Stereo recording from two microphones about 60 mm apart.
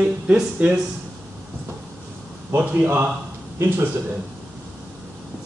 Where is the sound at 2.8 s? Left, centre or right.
Right.